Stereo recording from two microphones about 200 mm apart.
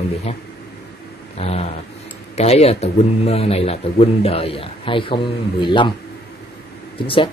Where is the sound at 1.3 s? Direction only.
30° left (ahead or behind).